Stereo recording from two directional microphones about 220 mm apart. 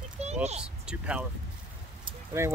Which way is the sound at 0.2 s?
30° right (ahead or behind).